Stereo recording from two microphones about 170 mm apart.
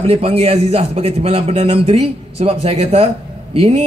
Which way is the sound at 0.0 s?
35° right (ahead or behind).